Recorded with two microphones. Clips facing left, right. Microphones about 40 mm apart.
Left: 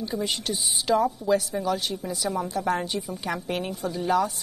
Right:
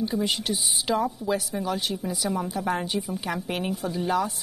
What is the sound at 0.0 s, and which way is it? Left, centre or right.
A woman's voice, centre.